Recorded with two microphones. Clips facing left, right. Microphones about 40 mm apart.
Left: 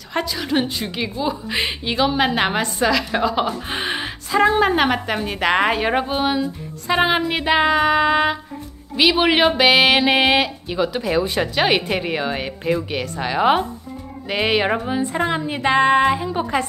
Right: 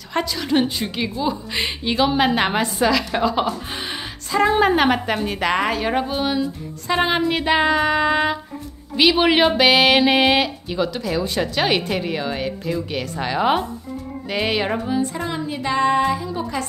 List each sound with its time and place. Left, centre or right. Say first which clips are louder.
0.1 s a woman's voice: right 1 dB; centre
3.7 s gasp: left 5 dB; left
4.5 s a woman's voice: right 2 dB; centre
5.5 s speech: left 4 dB; left
13.0 s speech: left 1 dB; centre; by 15.0 s left
15.1 s a woman's voice: left 4 dB; left